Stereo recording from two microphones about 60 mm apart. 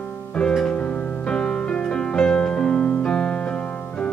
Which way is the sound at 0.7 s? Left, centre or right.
Left.